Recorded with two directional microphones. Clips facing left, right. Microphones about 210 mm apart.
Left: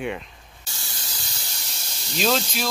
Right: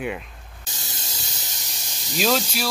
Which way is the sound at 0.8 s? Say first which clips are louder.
Right 2 dB; 25° right (ahead or behind).